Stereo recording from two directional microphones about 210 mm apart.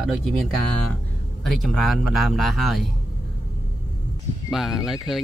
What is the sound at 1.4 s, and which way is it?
Speech, centre (ahead or behind).